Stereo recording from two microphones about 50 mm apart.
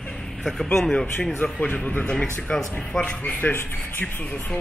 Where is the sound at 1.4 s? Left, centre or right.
Left.